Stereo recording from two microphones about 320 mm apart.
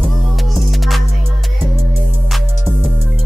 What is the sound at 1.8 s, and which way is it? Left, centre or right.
Music, left.